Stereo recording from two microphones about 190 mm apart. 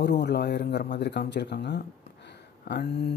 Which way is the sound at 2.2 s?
60° left (ahead or behind).